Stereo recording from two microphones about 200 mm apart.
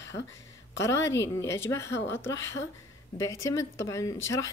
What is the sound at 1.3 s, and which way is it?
Speech, 15° left (ahead or behind).